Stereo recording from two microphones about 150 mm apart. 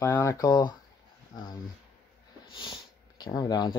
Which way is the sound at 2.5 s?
30° left (ahead or behind).